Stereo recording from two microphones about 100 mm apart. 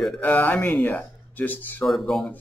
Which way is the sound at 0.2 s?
15° left (ahead or behind).